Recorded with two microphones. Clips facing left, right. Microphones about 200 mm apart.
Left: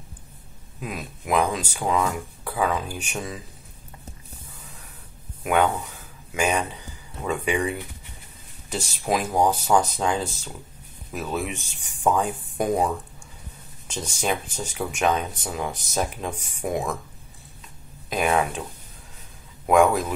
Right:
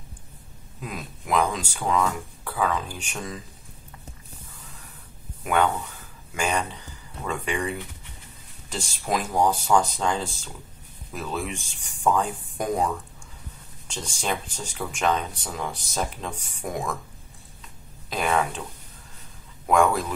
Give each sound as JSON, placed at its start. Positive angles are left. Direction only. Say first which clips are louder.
{"t": 0.7, "sound": "speech", "louder": "left 2 dB", "side_deg": 5}
{"t": 5.4, "sound": "speech", "louder": "left 2 dB", "side_deg": 10}
{"t": 9.8, "sound": "speech", "louder": "left 1 dB", "side_deg": 5}
{"t": 11.5, "sound": "speech", "louder": "even", "side_deg": 20}
{"t": 12.2, "sound": "speech", "louder": "left 2 dB", "side_deg": 10}
{"t": 13.9, "sound": "speech", "louder": "left 3 dB", "side_deg": 5}
{"t": 18.1, "sound": "speech", "louder": "left 2 dB", "side_deg": 10}
{"t": 19.7, "sound": "speech", "louder": "left 3 dB", "side_deg": 5}